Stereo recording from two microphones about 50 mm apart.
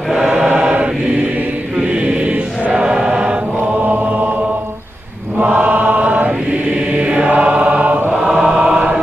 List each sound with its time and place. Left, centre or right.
0.3 s choir: right
2.7 s choir: centre
3.8 s chant: right
5.4 s chant: right
8.2 s chant: centre